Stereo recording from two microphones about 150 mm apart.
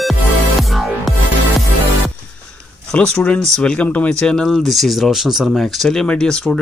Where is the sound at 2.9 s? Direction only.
5° left (ahead or behind).